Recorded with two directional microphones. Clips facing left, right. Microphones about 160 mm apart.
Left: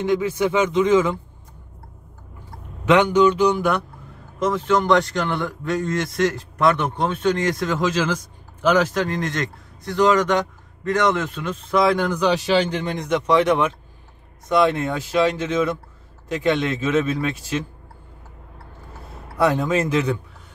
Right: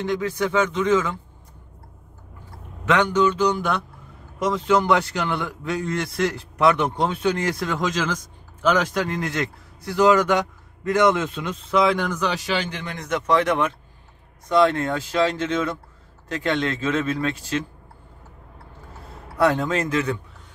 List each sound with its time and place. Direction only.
0.0 s speech: 10° left (ahead or behind)
2.9 s speech: 15° left (ahead or behind)
4.5 s a man's voice: 10° right (ahead or behind)
6.8 s a man's voice: 10° right (ahead or behind); by 8.2 s 10° left (ahead or behind)
8.9 s a man's voice: 5° right (ahead or behind)
11.7 s a man's voice: centre (ahead or behind)
12.3 s speech: 25° left (ahead or behind)
13.0 s speech: 15° left (ahead or behind)
14.5 s speech: 15° left (ahead or behind)
19.3 s speech: 10° left (ahead or behind)